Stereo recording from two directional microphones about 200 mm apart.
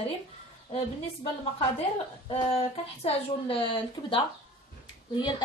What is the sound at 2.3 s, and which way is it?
A woman's voice, 30° left (ahead or behind).